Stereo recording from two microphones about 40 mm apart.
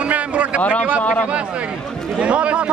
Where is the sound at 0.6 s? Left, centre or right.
Left.